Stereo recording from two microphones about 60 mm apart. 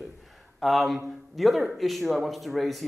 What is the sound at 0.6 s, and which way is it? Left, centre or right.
Speech, centre.